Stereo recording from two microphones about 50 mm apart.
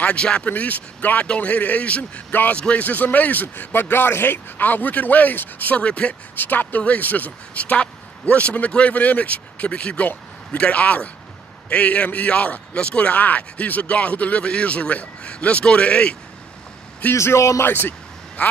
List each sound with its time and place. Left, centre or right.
0.0 s speech: left
0.5 s speech: left
2.8 s speech: left
3.9 s speech: left
5.8 s speech: left
6.3 s speech: left
17.1 s a man's voice: left
18.4 s speech: left